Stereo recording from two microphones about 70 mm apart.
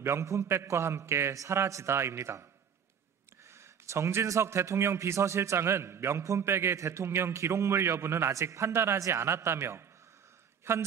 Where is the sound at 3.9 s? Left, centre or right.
Right.